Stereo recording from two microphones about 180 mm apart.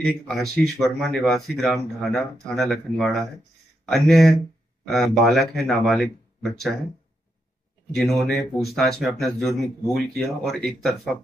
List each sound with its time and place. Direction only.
0.3 s speech: centre (ahead or behind)
7.9 s speech: centre (ahead or behind)